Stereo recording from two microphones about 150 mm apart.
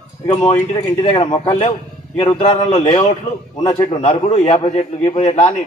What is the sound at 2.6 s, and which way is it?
Speech, 50° left (ahead or behind).